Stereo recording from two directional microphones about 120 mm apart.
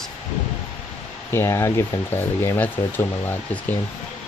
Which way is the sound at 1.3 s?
20° left (ahead or behind).